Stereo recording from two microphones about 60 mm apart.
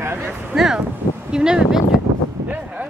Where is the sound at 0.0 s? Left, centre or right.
Right.